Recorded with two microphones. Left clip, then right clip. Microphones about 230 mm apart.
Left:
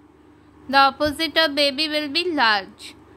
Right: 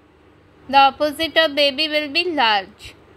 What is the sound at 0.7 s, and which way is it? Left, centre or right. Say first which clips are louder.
Speech: right 3 dB; centre.